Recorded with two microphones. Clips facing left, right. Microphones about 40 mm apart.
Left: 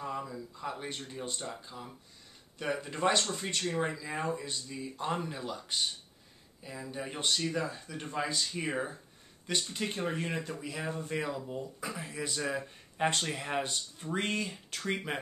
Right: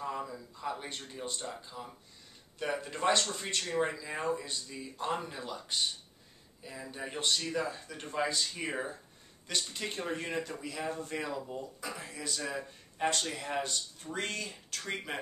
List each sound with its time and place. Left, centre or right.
0.0 s speech: centre